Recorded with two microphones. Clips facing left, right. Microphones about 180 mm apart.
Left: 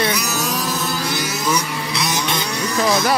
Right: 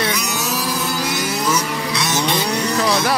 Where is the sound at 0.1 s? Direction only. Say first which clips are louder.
Left 1 dB; 5° left (ahead or behind).